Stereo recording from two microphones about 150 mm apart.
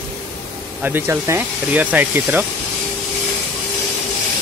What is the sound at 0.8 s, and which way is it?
Speech, 15° right (ahead or behind).